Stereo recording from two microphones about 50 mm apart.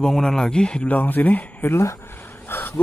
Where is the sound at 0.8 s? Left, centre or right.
Left.